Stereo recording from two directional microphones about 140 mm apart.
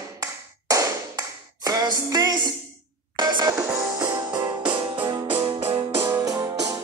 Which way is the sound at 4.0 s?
30° right (ahead or behind).